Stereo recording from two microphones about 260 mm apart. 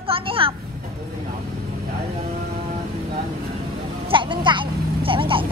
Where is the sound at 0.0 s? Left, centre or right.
Centre.